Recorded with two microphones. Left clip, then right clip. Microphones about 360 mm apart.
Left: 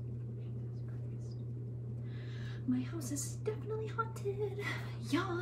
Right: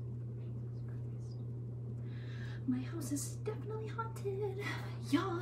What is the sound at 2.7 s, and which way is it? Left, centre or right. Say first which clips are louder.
Speech: left 1 dB; centre.